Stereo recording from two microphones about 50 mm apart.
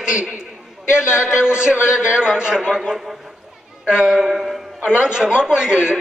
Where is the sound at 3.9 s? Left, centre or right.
Centre.